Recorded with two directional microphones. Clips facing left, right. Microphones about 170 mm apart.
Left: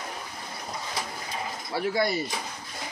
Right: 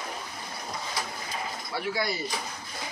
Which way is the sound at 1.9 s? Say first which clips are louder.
Left 4 dB; 50° left (ahead or behind).